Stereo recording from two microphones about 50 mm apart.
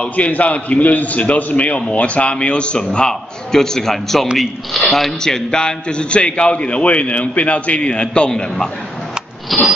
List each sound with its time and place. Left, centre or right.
0.0 s a man's voice: left
9.5 s mechanisms: centre